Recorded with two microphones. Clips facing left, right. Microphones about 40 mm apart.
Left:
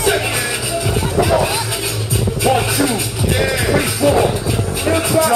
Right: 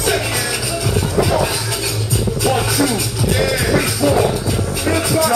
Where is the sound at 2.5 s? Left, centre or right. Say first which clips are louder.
Left 2 dB; centre.